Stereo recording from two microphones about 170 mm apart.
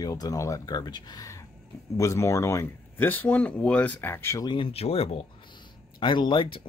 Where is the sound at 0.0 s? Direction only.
20° left (ahead or behind).